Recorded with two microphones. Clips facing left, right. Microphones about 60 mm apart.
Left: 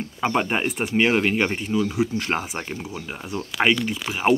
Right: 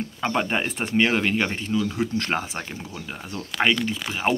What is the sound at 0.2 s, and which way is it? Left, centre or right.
Speech, centre.